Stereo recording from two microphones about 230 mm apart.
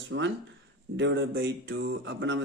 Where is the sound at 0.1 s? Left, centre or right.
Right.